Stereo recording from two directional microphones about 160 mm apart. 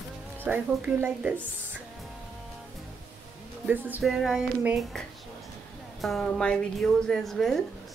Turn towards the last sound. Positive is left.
turn(degrees=0)  # may be behind; listen again after turning